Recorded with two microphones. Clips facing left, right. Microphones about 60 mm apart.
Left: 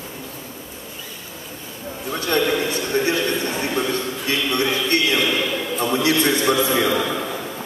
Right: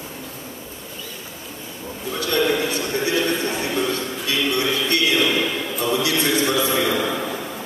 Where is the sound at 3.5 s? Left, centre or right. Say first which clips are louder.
Even; left.